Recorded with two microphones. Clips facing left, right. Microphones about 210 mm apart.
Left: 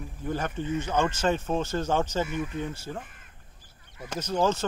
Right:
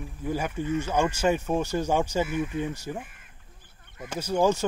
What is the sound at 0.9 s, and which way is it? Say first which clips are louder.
Speech: right 1 dB; 15° right (ahead or behind).